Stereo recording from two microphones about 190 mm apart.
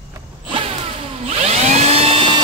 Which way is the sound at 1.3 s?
35° right (ahead or behind).